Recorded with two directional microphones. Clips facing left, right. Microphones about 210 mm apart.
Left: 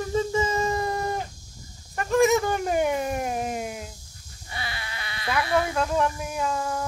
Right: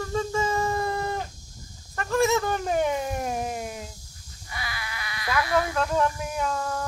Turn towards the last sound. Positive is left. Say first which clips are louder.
# left 1 dB
turn(degrees=10)  # may be behind; listen again after turning